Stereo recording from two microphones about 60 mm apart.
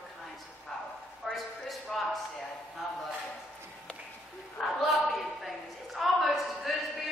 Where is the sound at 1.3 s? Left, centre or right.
Centre.